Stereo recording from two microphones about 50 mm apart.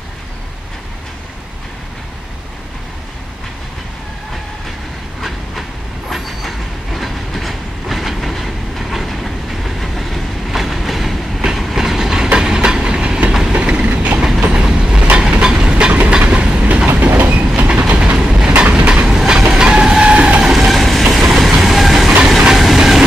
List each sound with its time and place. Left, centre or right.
5.2 s train: centre; by 17.1 s right
17.1 s train: right
18.1 s train: centre
18.6 s vehicle: right
19.0 s train: centre
20.4 s vehicle: centre
21.1 s train: centre